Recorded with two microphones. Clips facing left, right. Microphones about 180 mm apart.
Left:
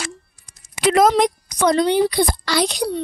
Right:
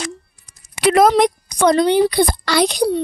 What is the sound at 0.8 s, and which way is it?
A woman's voice, 60° right (ahead or behind).